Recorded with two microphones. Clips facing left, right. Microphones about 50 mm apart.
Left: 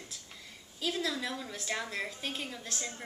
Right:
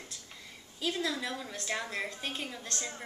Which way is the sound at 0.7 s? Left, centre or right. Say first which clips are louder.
Right 1 dB; centre.